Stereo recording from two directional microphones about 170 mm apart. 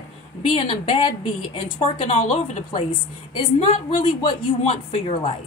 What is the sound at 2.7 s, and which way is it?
A woman's voice, 30° left (ahead or behind).